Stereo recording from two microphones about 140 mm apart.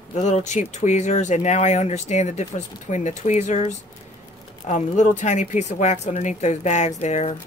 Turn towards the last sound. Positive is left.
turn(degrees=55)  # may be behind; listen again after turning